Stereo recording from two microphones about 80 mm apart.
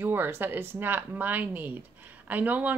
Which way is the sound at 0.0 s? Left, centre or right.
Right.